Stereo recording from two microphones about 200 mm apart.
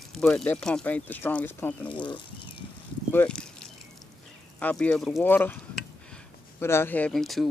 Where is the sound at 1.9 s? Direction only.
25° left (ahead or behind).